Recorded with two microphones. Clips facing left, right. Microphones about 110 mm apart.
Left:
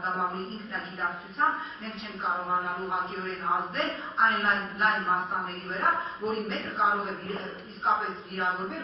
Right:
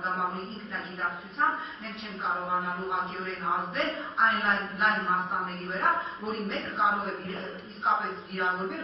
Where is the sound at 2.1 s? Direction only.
Centre (ahead or behind).